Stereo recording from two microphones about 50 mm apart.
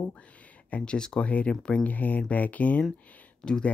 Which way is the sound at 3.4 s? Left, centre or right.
Centre.